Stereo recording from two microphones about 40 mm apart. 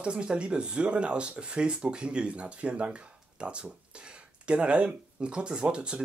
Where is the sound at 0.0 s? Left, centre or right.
Right.